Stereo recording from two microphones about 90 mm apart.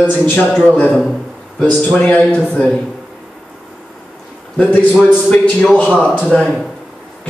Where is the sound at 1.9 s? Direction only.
10° left (ahead or behind).